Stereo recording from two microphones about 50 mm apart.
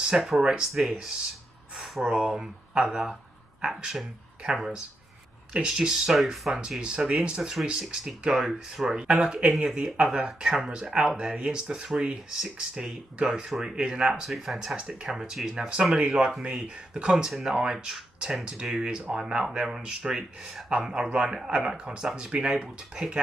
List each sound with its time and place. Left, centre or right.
0.0 s speech: centre
2.0 s speech: centre
6.8 s speech: centre
9.0 s speech: right
13.7 s speech: right
14.0 s speech: centre
14.8 s speech: centre
15.0 s speech: centre
16.0 s speech: centre